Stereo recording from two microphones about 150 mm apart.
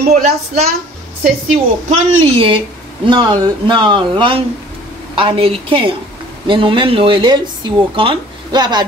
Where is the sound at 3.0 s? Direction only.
30° right (ahead or behind).